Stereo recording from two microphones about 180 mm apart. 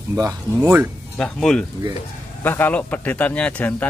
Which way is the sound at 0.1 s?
20° right (ahead or behind).